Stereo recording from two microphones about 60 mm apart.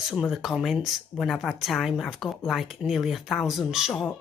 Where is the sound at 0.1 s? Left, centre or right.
Centre.